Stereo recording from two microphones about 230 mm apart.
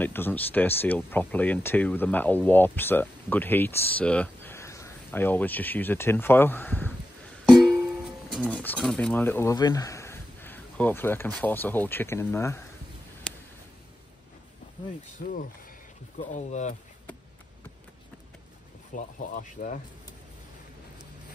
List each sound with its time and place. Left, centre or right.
0.0 s speech: centre
7.4 s music: centre
8.3 s speech: centre
13.3 s a sound: centre
15.2 s speech: left
18.9 s speech: left